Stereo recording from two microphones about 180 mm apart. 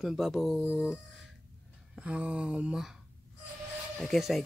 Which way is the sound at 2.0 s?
5° right (ahead or behind).